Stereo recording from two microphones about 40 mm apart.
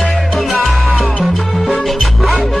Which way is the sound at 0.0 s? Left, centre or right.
Centre.